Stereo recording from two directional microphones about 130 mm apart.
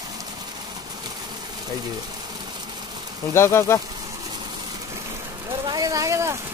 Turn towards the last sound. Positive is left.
turn(degrees=-25)  # may be behind; listen again after turning